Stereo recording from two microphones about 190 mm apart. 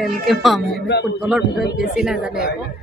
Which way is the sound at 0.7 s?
60° left (ahead or behind).